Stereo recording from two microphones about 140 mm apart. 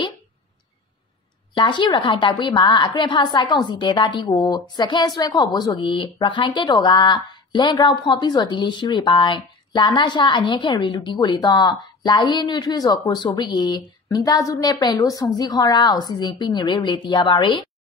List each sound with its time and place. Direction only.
1.5 s a woman's voice: 35° left (ahead or behind)